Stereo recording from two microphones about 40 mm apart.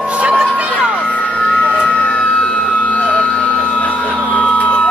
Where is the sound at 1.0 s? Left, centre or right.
Left.